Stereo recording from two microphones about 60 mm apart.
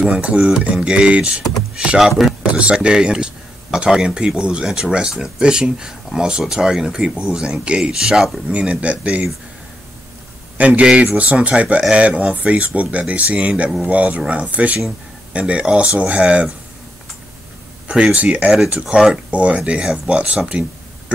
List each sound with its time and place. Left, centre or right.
0.0 s speech: centre
2.4 s speech: centre
10.6 s speech: right
17.8 s speech: centre